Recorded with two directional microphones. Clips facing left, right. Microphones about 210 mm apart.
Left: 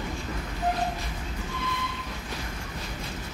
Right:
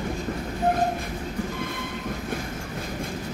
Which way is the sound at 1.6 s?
50° right (ahead or behind).